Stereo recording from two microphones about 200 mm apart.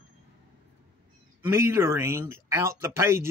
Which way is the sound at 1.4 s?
10° right (ahead or behind).